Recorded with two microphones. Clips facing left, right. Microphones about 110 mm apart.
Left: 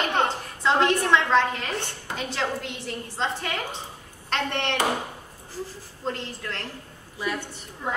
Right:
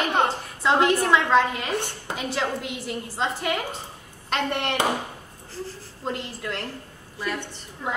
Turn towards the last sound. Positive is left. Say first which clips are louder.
# even
turn(degrees=-5)  # may be behind; listen again after turning